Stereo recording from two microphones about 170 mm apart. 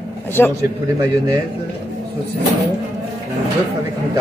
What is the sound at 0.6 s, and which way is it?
Speech, 20° right (ahead or behind).